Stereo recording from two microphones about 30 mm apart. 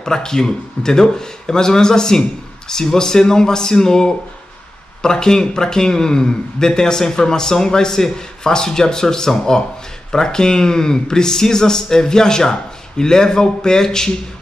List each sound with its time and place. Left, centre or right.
0.0 s a man's voice: left